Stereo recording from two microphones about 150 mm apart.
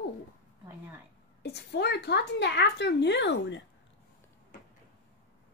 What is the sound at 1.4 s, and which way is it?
Speech, 90° left.